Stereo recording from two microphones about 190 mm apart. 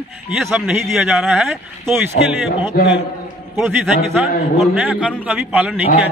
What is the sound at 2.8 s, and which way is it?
Speech, 55° left (ahead or behind).